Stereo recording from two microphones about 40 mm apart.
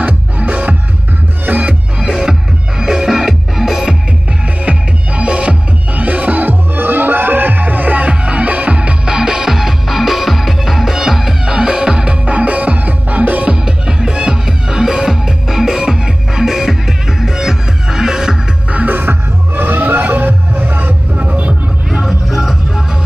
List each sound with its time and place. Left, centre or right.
0.0 s music: right
1.5 s music: right
2.0 s music: centre
4.6 s music: right
5.9 s music: right; by 12.2 s centre
12.3 s music: right
13.5 s music: centre
18.9 s music: right
22.3 s music: centre